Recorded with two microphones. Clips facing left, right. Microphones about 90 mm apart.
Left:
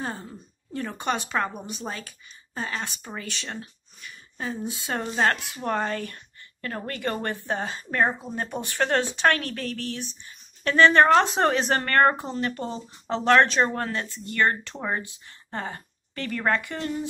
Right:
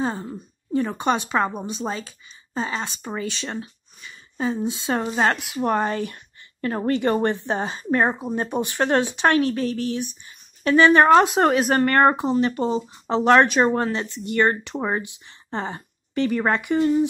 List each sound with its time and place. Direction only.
0.0 s a woman's voice: 25° right (ahead or behind)